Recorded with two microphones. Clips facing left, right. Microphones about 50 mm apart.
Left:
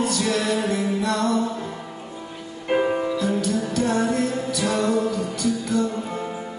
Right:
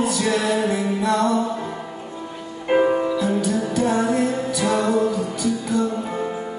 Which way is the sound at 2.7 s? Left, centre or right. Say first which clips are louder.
Right 3 dB; centre.